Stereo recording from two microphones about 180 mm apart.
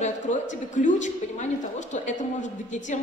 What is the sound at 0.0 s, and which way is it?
A woman's voice, 45° left (ahead or behind).